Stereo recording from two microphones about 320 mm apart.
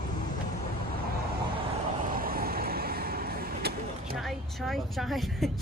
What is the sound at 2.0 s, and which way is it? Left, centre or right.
Vehicle, right.